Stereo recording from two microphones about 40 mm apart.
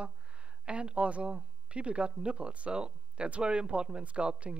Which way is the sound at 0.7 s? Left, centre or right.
Right.